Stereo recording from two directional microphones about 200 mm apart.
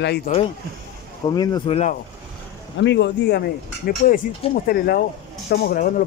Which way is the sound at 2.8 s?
60° left (ahead or behind).